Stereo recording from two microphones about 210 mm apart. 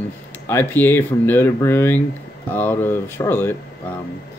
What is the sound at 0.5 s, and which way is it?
Speech, 10° left (ahead or behind).